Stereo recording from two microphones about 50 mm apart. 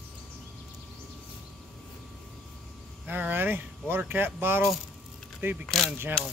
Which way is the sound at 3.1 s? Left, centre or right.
Right.